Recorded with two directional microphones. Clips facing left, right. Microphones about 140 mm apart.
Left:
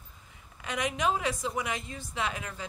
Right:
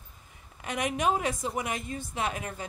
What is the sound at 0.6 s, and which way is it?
A woman's voice, 50° right (ahead or behind).